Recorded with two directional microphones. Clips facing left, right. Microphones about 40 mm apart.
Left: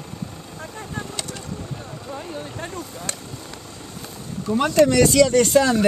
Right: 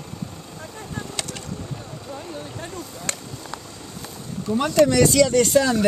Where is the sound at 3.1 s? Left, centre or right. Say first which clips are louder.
Right 2 dB; right.